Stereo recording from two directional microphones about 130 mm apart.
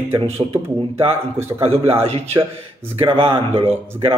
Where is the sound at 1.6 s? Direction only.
45° right (ahead or behind).